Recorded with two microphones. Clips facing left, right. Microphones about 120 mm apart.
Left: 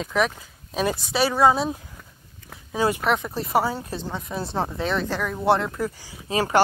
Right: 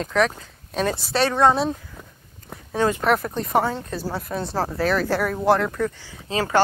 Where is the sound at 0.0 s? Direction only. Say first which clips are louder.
Right 2 dB; 5° left (ahead or behind).